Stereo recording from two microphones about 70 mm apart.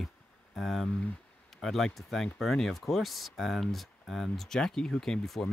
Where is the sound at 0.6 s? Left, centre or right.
Centre.